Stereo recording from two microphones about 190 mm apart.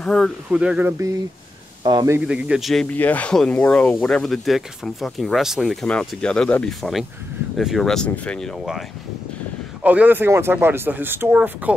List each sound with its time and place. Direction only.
0.0 s speech: centre (ahead or behind); by 2.1 s 20° right (ahead or behind)
2.1 s speech: 5° right (ahead or behind)
9.8 s speech: 10° right (ahead or behind)